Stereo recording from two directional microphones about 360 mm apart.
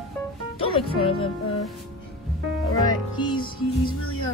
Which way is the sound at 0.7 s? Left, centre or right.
Centre.